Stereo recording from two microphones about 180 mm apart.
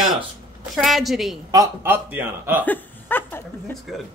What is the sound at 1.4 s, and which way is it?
A man's voice, 15° right (ahead or behind).